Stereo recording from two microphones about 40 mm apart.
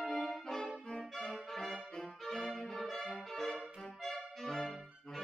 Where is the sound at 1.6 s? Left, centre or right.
Centre.